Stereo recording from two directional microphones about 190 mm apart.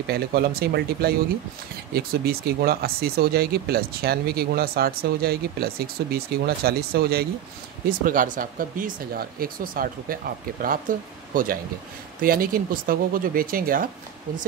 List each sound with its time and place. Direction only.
0.1 s speech: 55° right (ahead or behind)